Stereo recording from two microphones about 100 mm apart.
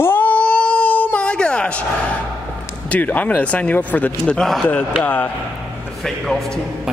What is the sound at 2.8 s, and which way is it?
Speech, 15° left (ahead or behind).